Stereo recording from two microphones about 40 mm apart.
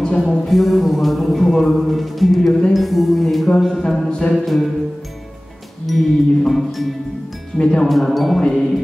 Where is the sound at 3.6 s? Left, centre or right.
Centre.